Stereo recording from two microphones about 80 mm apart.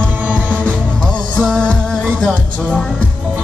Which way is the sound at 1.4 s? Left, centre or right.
Centre.